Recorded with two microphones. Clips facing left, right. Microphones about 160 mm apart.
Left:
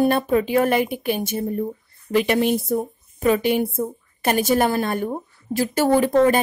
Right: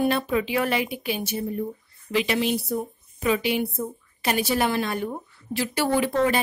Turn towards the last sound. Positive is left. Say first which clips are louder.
# left 6 dB
turn(degrees=45)  # may be behind; listen again after turning